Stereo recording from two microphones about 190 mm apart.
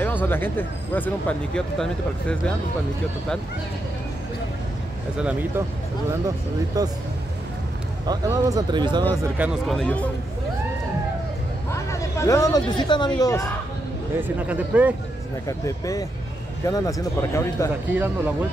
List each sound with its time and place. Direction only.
0.0 s speech: 10° left (ahead or behind)
5.1 s speech: 5° right (ahead or behind)
6.2 s speech: 20° right (ahead or behind)
8.1 s speech: 20° right (ahead or behind)
9.4 s speech: centre (ahead or behind)
11.7 s speech: 15° left (ahead or behind)
14.2 s speech: 5° right (ahead or behind)
15.4 s speech: 20° left (ahead or behind)
17.9 s speech: 10° right (ahead or behind)